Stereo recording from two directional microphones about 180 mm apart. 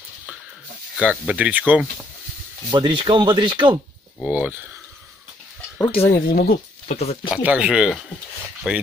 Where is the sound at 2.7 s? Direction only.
25° right (ahead or behind).